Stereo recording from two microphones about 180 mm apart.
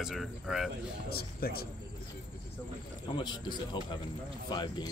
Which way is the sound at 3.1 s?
25° left (ahead or behind).